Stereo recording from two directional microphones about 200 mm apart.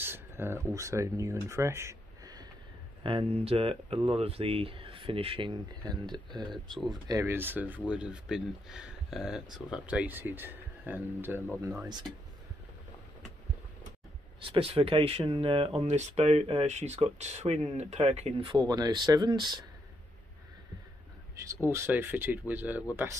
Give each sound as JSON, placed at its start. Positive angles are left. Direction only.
{"t": 0.0, "sound": "speech", "side_deg": -10}
{"t": 3.0, "sound": "speech", "side_deg": -25}
{"t": 14.4, "sound": "speech", "side_deg": -25}
{"t": 21.6, "sound": "speech", "side_deg": -10}